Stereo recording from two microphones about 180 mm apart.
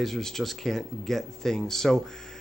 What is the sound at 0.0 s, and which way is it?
Speech, centre (ahead or behind).